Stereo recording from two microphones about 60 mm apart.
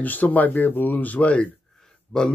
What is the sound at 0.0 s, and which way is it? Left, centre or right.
Speech, left.